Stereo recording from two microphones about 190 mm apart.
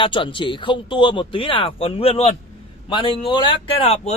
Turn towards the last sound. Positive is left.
turn(degrees=30)  # may be behind; listen again after turning